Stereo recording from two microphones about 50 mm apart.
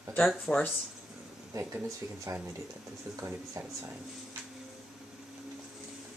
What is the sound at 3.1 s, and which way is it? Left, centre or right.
Speech, right.